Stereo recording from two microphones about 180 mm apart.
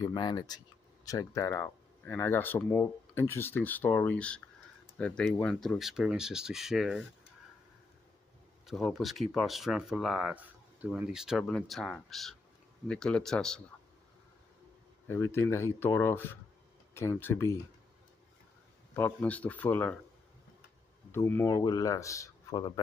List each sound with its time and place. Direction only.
0.0 s speech: 25° left (ahead or behind); by 7.1 s centre (ahead or behind)
8.6 s speech: centre (ahead or behind)
15.0 s speech: 15° left (ahead or behind)
18.9 s speech: 10° left (ahead or behind)
21.1 s speech: 15° left (ahead or behind)